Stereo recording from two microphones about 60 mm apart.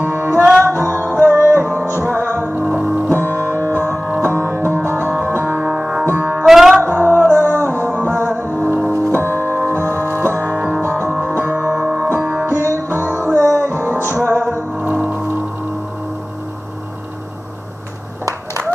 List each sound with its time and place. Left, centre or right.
0.0 s music: right
2.6 s music: right
3.1 s music: right
6.4 s music: centre
6.8 s music: right
10.5 s music: right
10.8 s music: right
12.2 s music: right
12.4 s music: right
14.8 s gong: right